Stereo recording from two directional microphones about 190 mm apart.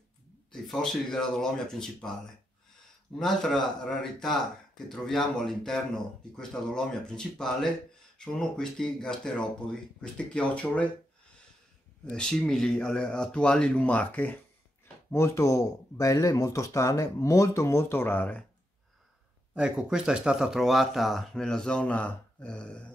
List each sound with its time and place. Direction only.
0.5 s speech: 5° left (ahead or behind)
3.2 s speech: centre (ahead or behind)
12.1 s speech: 5° left (ahead or behind)
19.5 s speech: 5° right (ahead or behind)